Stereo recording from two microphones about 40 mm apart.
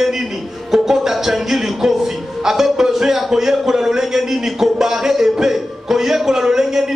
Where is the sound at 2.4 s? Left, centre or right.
Centre.